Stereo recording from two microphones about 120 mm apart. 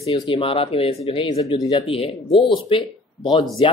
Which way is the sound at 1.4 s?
30° left (ahead or behind).